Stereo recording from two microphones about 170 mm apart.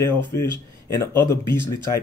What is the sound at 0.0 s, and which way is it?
Speech, 15° left (ahead or behind).